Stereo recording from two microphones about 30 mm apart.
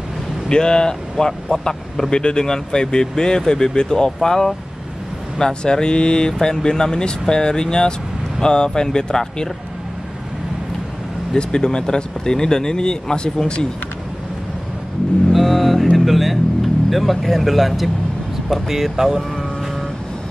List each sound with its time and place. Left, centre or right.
0.5 s speech: left
5.4 s speech: left
11.3 s speech: left
15.3 s vehicle: centre
16.1 s speech: centre
18.5 s speech: centre